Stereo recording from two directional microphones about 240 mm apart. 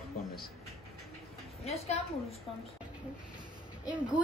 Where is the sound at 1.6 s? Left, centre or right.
Left.